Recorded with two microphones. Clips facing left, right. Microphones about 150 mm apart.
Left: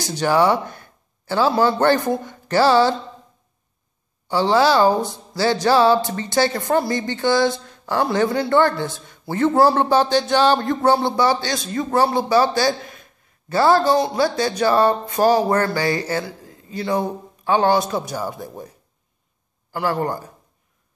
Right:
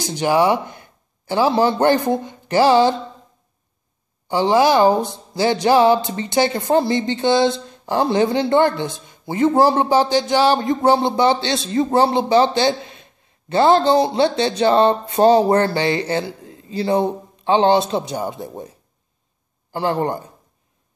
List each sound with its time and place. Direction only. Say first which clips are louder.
0.0 s a man's voice: right 1 dB; 15° right (ahead or behind)
4.3 s speech: right 1 dB; 15° right (ahead or behind)
19.7 s speech: right 2 dB; 25° right (ahead or behind)